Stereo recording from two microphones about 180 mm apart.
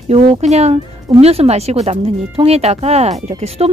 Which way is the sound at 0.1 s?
35° right (ahead or behind).